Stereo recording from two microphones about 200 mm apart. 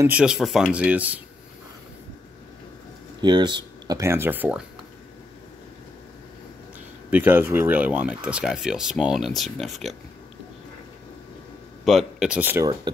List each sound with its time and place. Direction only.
0.0 s speech: 5° right (ahead or behind)
3.2 s speech: 20° right (ahead or behind)
7.1 s speech: 10° right (ahead or behind)
11.8 s speech: centre (ahead or behind); by 12.9 s 15° right (ahead or behind)